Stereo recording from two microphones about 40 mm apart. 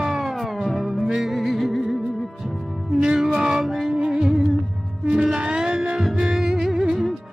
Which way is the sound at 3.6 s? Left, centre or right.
Centre.